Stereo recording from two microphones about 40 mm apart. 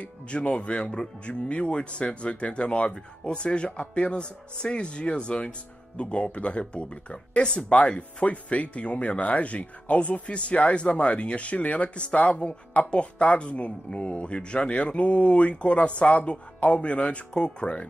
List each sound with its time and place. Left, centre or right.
0.0 s speech: left